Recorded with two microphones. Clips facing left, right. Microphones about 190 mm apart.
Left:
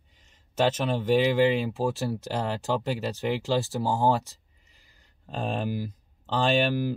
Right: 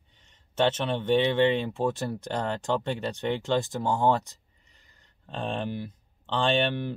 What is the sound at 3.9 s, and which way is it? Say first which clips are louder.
Speech: right 1 dB; 35° left (ahead or behind).